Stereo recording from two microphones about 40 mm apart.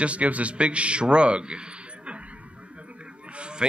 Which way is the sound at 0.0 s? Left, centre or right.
Right.